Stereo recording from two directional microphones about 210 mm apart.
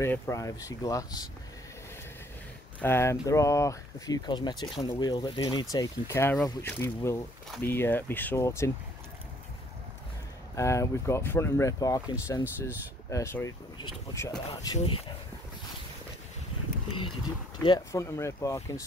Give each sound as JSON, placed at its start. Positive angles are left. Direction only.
{"t": 0.0, "sound": "speech", "side_deg": 15}
{"t": 2.8, "sound": "speech", "side_deg": 10}
{"t": 10.5, "sound": "speech", "side_deg": 15}
{"t": 17.6, "sound": "speech", "side_deg": 15}